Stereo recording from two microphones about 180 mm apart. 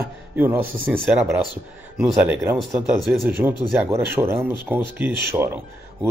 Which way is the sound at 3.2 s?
10° right (ahead or behind).